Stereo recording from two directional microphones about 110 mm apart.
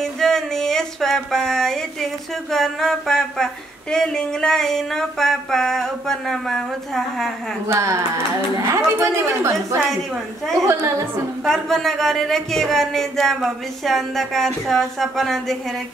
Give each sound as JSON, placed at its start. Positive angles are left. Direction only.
{"t": 0.0, "sound": "a sound", "side_deg": 5}
{"t": 2.5, "sound": "speech", "side_deg": 5}
{"t": 7.6, "sound": "a woman's voice", "side_deg": -25}
{"t": 11.4, "sound": "speech", "side_deg": 5}